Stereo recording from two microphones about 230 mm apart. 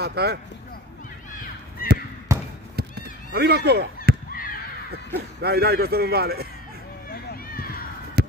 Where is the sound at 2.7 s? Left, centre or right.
Right.